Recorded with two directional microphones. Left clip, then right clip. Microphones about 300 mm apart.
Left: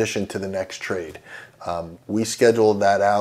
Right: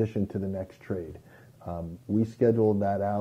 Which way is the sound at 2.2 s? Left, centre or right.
Centre.